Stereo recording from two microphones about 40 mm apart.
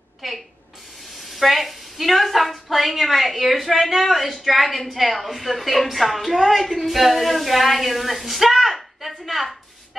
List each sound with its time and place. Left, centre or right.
0.2 s a woman's voice: centre